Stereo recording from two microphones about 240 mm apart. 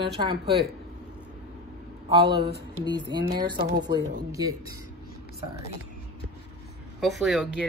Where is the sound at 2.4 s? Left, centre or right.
Right.